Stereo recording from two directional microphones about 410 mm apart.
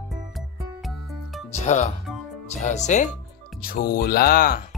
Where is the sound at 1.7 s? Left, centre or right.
Centre.